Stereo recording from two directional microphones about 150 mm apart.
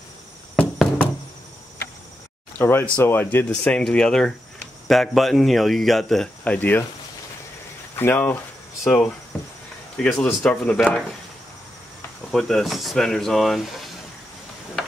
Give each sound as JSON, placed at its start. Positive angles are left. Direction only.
{"t": 0.6, "sound": "knock", "side_deg": 5}
{"t": 2.6, "sound": "speech", "side_deg": 15}
{"t": 7.9, "sound": "speech", "side_deg": 15}
{"t": 9.9, "sound": "speech", "side_deg": 5}
{"t": 12.3, "sound": "speech", "side_deg": 0}